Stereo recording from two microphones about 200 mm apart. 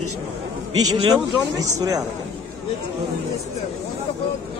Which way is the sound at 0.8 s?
20° right (ahead or behind).